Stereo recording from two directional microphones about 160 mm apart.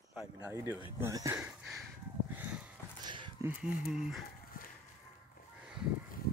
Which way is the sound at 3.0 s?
30° right (ahead or behind).